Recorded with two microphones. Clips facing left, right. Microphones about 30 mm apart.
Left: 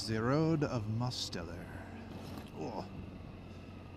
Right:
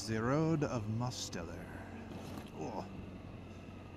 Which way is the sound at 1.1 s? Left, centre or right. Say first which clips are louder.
Left 2 dB; left.